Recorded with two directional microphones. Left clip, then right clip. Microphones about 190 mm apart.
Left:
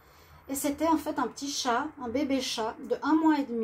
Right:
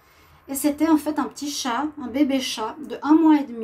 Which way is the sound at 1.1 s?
55° right (ahead or behind).